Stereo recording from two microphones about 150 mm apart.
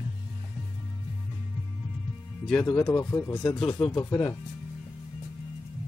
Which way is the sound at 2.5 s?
15° left (ahead or behind).